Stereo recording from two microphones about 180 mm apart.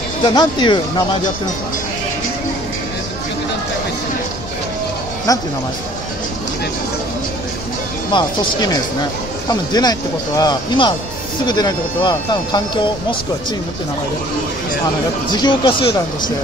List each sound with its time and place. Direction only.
0.2 s speech: 25° left (ahead or behind)
8.1 s speech: 25° left (ahead or behind)
15.3 s speech: 25° left (ahead or behind)